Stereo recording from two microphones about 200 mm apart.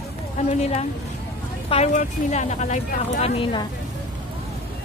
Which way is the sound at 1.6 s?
30° left (ahead or behind).